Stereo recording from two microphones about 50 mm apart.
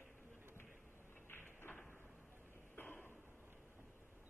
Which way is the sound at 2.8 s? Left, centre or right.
Left.